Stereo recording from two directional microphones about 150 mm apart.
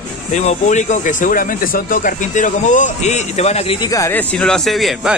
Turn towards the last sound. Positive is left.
turn(degrees=0)  # may be behind; listen again after turning